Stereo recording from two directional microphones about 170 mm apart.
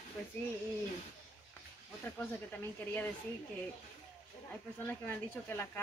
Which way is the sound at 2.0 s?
10° left (ahead or behind).